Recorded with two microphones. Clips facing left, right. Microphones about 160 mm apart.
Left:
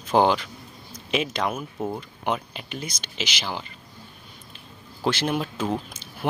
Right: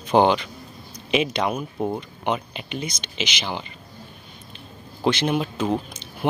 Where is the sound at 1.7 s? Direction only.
15° right (ahead or behind).